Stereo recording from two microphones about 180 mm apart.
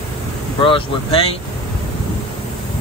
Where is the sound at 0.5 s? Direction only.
30° left (ahead or behind).